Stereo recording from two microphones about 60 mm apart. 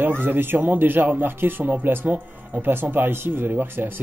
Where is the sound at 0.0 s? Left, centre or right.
Right.